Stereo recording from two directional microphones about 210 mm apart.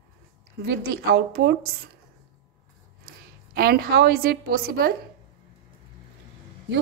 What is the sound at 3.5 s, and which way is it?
A woman's voice, 45° right (ahead or behind).